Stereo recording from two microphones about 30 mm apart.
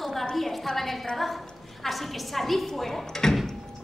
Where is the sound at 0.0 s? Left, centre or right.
Centre.